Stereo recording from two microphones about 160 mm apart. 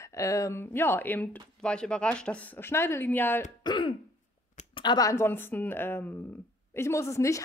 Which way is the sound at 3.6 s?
30° left (ahead or behind).